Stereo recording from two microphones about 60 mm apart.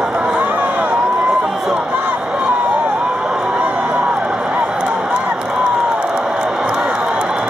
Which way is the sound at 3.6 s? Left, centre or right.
Right.